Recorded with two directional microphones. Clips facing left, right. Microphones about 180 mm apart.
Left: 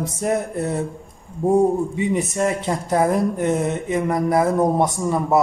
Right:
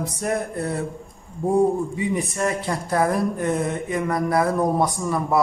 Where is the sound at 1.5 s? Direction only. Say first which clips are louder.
Left 2 dB; 20° left (ahead or behind).